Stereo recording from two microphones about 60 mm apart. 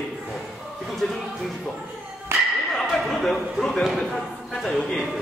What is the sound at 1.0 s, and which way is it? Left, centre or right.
Speech, centre.